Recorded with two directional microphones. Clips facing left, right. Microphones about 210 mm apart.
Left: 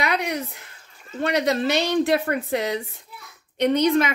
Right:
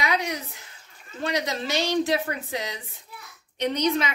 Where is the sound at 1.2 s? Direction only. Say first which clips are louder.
Left 6 dB; 60° left (ahead or behind).